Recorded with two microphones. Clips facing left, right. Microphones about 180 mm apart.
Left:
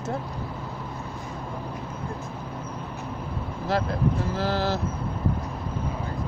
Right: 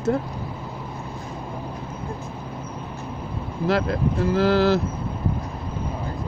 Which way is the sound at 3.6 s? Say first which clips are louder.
Right 3 dB; 90° right.